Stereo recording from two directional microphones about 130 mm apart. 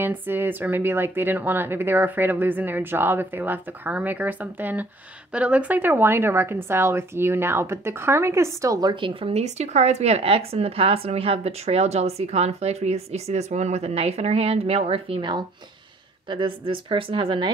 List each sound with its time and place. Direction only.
0.0 s a woman's voice: 15° right (ahead or behind); by 9.3 s 35° right (ahead or behind)
9.3 s a woman's voice: 60° right (ahead or behind); by 17.5 s 40° right (ahead or behind)